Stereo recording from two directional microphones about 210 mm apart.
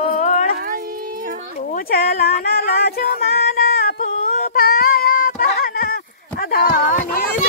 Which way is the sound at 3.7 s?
35° left (ahead or behind).